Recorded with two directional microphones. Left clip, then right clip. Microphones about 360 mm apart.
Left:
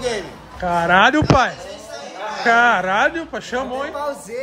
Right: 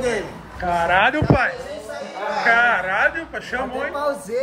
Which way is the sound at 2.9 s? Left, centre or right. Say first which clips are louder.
Left 2 dB; centre.